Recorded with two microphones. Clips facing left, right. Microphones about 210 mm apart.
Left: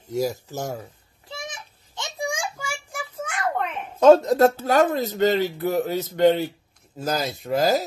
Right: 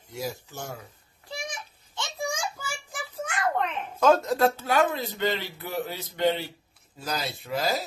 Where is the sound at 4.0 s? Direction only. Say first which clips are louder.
Left 7 dB; 30° left (ahead or behind).